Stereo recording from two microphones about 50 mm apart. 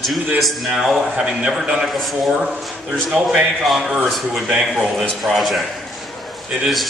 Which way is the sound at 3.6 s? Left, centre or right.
Centre.